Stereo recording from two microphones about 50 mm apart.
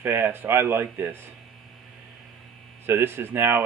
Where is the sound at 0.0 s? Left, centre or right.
Right.